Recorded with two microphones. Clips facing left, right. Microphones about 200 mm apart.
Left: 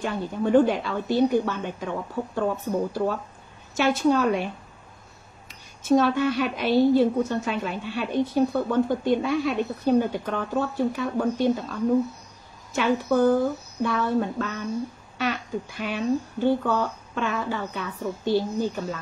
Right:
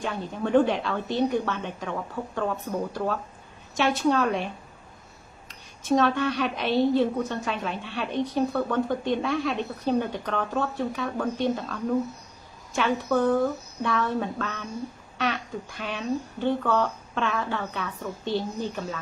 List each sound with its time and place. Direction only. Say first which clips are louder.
0.0 s speech: left 3 dB; centre (ahead or behind)
5.5 s speech: left 4 dB; centre (ahead or behind)